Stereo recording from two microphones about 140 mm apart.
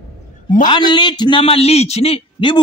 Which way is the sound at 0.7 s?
35° left (ahead or behind).